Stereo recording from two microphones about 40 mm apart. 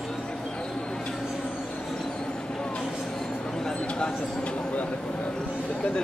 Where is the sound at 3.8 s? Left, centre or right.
Left.